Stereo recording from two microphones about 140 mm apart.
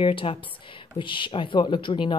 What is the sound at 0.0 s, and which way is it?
Speech, 40° left (ahead or behind).